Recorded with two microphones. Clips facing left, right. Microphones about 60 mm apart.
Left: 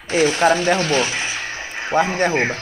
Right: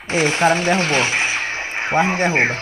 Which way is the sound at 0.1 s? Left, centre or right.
Right.